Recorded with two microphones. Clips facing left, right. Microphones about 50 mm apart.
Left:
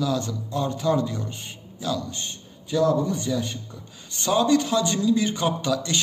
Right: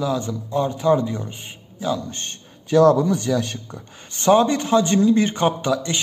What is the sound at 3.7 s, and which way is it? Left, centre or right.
Speech, right.